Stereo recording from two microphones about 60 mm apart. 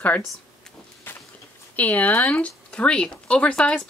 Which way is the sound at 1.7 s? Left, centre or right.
Left.